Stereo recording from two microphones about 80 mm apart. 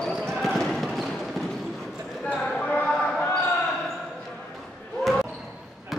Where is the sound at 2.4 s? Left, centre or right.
Centre.